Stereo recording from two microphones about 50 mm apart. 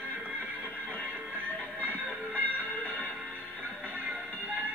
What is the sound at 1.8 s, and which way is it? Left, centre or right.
Music, right.